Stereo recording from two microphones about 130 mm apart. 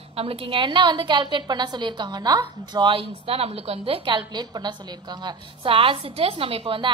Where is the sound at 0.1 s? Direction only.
45° right (ahead or behind).